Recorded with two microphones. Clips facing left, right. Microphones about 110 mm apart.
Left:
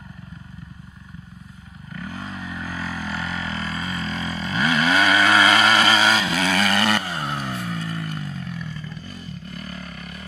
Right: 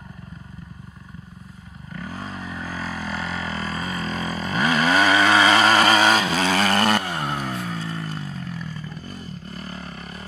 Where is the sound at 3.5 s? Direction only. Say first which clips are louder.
Even; 40° right (ahead or behind).